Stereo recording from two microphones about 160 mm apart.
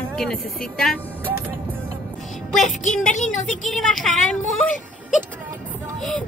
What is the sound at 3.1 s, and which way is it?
Speech, 50° left (ahead or behind).